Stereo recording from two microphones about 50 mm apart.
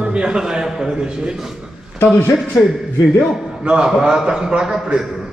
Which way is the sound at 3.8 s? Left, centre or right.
Centre.